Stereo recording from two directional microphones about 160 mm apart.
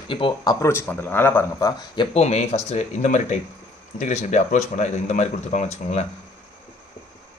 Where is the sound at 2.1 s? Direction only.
40° left (ahead or behind).